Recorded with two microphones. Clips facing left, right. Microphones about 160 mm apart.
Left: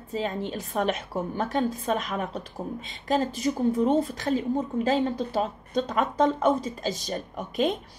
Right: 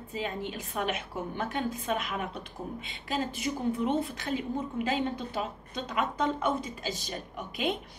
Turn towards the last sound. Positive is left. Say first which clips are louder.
# left 6 dB
turn(degrees=45)  # may be behind; listen again after turning